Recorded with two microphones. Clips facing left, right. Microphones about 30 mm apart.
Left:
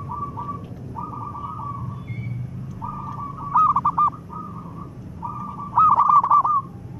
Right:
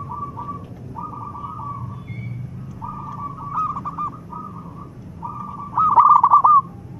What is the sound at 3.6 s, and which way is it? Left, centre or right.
Bird, left.